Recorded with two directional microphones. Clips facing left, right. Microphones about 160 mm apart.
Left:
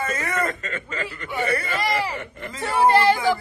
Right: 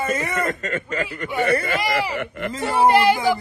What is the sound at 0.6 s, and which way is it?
Speech, 50° right (ahead or behind).